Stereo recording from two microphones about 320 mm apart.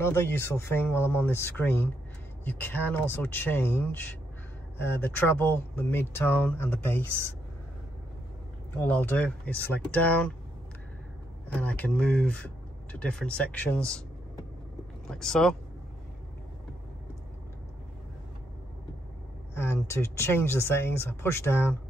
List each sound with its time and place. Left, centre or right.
0.0 s speech: centre
8.7 s speech: centre
11.4 s speech: centre
15.0 s speech: centre
19.5 s speech: centre